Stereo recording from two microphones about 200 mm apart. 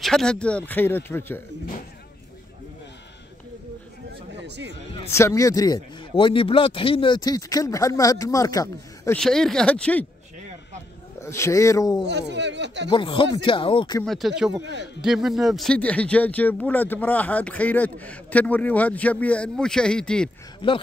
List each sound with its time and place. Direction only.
0.0 s speech: 5° left (ahead or behind)
4.3 s a sound: 60° right (ahead or behind)
5.1 s speech: 15° left (ahead or behind)
9.2 s speech: centre (ahead or behind)
11.1 s speech: 15° left (ahead or behind)
12.0 s speech: 60° right (ahead or behind)
12.9 s speech: 25° left (ahead or behind)
14.0 s speech: centre (ahead or behind)
14.6 s speech: 60° right (ahead or behind)
15.0 s speech: centre (ahead or behind)
20.6 s speech: 25° left (ahead or behind)